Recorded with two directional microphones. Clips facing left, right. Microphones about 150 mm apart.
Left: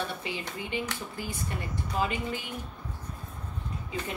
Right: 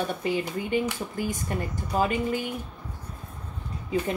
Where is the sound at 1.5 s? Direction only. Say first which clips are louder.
Right 3 dB; 45° right (ahead or behind).